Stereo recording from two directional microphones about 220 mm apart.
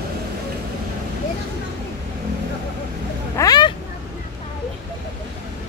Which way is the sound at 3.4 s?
20° left (ahead or behind).